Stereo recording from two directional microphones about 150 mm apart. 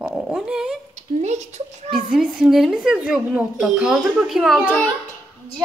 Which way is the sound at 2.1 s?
5° right (ahead or behind).